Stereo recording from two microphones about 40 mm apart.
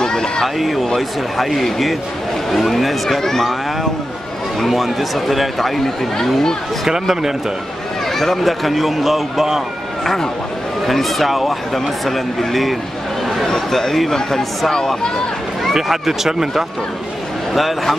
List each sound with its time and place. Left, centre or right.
0.0 s run: centre
0.6 s speech: centre
4.6 s speech: centre
6.9 s speech: centre
8.1 s speech: centre
10.0 s speech: centre
15.7 s speech: centre